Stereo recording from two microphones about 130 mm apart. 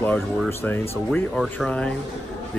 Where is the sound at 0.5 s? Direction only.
15° left (ahead or behind).